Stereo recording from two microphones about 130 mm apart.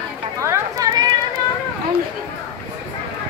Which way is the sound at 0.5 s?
25° right (ahead or behind).